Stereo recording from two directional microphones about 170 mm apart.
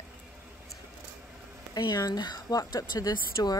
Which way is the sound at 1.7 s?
20° left (ahead or behind).